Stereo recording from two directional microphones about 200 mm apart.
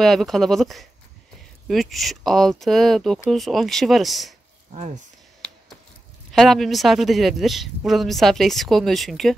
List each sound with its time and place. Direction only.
0.0 s speech: centre (ahead or behind)
4.7 s speech: 35° right (ahead or behind)
6.3 s speech: centre (ahead or behind)